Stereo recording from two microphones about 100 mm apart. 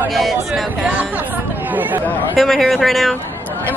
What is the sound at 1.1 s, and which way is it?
Chatter, 20° right (ahead or behind).